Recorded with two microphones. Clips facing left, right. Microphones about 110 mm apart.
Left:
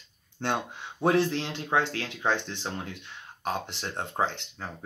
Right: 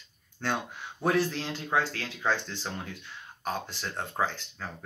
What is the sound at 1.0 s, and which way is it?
Speech, 25° left (ahead or behind).